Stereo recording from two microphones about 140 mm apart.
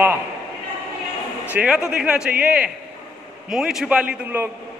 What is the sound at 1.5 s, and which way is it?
Speech, 5° right (ahead or behind).